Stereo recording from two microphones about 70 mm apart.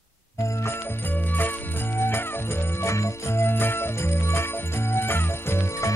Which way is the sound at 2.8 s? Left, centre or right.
Left.